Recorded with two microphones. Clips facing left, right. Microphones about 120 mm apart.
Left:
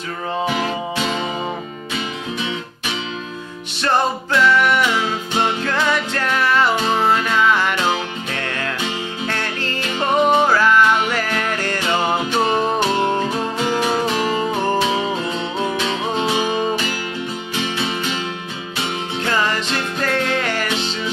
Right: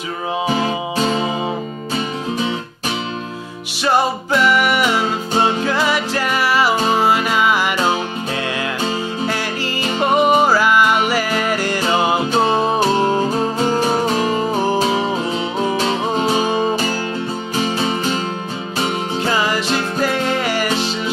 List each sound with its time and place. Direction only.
0.5 s music: 35° right (ahead or behind)
3.8 s music: 10° right (ahead or behind)
4.9 s music: 35° right (ahead or behind)
5.6 s music: 10° right (ahead or behind)
9.3 s music: 5° right (ahead or behind)
12.3 s music: 35° right (ahead or behind)
19.2 s music: 10° right (ahead or behind)